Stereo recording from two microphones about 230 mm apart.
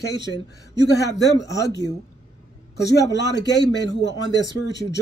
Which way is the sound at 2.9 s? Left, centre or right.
Left.